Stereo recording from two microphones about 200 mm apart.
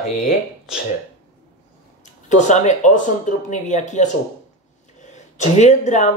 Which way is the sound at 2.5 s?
35° left (ahead or behind).